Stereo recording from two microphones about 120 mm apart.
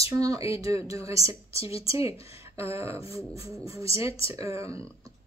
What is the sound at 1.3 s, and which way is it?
Speech, 55° left (ahead or behind).